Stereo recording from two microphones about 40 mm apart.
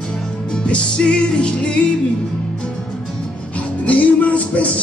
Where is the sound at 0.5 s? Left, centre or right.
Left.